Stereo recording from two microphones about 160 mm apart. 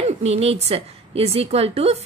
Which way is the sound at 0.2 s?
40° right (ahead or behind).